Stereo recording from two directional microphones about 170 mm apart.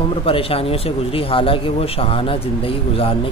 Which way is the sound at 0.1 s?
35° left (ahead or behind).